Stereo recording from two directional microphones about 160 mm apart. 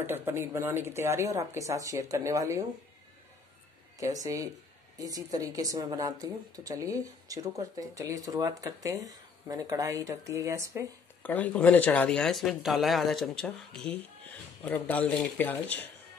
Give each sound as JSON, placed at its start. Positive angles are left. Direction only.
{"t": 0.0, "sound": "speech", "side_deg": -15}
{"t": 4.0, "sound": "a woman's voice", "side_deg": -20}
{"t": 11.2, "sound": "speech", "side_deg": 10}